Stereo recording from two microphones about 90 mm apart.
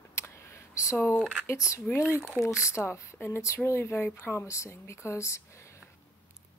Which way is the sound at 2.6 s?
35° left (ahead or behind).